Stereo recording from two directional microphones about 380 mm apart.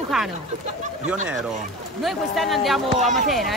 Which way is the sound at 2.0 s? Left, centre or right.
Centre.